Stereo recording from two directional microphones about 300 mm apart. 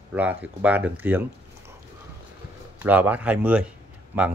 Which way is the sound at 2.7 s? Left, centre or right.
Centre.